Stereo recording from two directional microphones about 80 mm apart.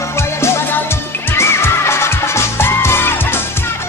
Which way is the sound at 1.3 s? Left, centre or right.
Left.